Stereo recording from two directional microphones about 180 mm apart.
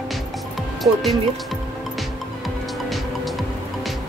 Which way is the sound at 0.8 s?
Centre (ahead or behind).